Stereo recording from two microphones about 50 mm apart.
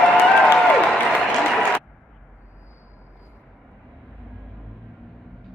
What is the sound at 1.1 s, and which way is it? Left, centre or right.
Applause, centre.